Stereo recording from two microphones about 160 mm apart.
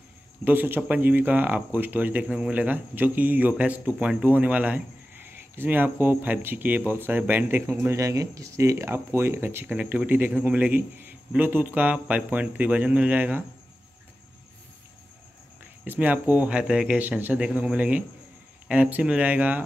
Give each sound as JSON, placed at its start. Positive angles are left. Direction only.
{"t": 0.5, "sound": "speech", "side_deg": -10}
{"t": 15.8, "sound": "speech", "side_deg": -10}